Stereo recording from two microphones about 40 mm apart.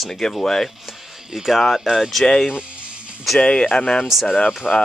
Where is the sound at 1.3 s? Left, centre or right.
Centre.